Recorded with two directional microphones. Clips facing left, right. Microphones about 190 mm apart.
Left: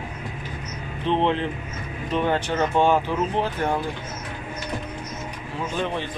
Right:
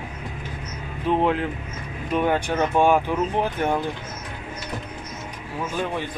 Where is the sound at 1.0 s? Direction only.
5° right (ahead or behind).